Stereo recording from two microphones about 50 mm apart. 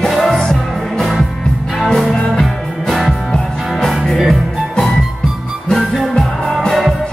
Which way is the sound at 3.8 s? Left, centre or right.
Centre.